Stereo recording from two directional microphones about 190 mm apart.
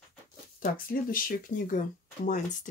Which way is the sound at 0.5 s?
45° left (ahead or behind).